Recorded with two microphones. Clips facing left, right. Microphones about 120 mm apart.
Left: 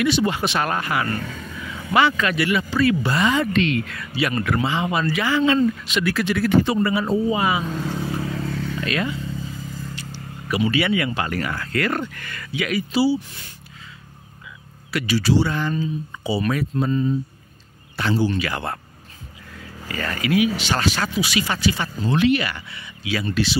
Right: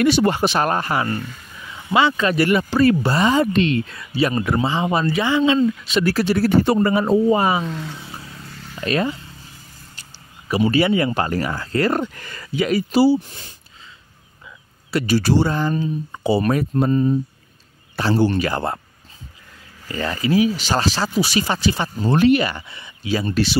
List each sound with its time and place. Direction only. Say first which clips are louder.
0.0 s speech: right 4 dB; 45° right (ahead or behind)
1.9 s speech: right 1 dB; 20° right (ahead or behind)
2.2 s speech: right 4 dB; 40° right (ahead or behind); by 5.7 s 20° right (ahead or behind)
5.9 s speech: right 6 dB; 35° right (ahead or behind)
7.7 s speech: left 5 dB; 50° left (ahead or behind)
8.2 s a sound: left 12 dB; 90° left
8.8 s speech: right 6 dB; 35° right (ahead or behind)
10.5 s speech: right 3 dB; 40° right (ahead or behind)
15.0 s speech: right 2 dB; 50° right (ahead or behind)
15.5 s speech: right 3 dB; 35° right (ahead or behind)
15.8 s speech: right 3 dB; 50° right (ahead or behind)
18.1 s speech: right 4 dB; 60° right (ahead or behind)
18.4 s speech: right 4 dB; 35° right (ahead or behind)
20.0 s speech: right 2 dB; 30° right (ahead or behind); by 23.6 s 45° right (ahead or behind)